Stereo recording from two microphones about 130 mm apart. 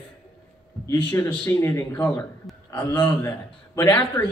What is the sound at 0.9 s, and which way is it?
Speech, 15° left (ahead or behind).